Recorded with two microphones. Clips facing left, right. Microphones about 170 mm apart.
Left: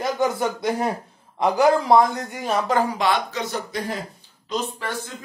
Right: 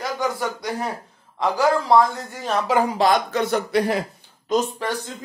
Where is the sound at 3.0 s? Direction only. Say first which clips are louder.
Right 4 dB; 40° right (ahead or behind); by 4.0 s 70° right (ahead or behind).